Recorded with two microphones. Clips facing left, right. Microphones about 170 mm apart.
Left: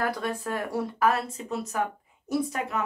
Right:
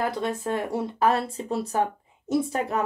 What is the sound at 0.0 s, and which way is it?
Speech, 25° right (ahead or behind).